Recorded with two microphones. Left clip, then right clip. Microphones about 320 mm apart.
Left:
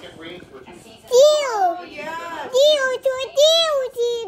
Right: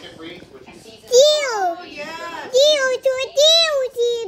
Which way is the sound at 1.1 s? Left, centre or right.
Centre.